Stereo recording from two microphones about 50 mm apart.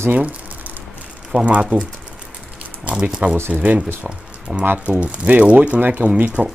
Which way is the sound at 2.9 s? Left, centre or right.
Centre.